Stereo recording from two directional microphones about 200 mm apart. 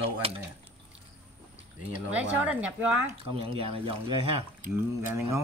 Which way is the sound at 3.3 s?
25° right (ahead or behind).